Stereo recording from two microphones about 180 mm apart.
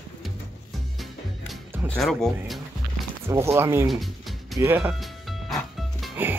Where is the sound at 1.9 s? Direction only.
Centre (ahead or behind).